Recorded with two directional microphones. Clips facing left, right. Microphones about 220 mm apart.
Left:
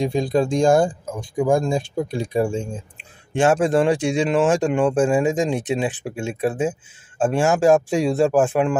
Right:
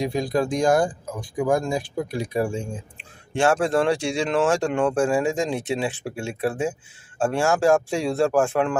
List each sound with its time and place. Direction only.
0.0 s speech: 25° left (ahead or behind)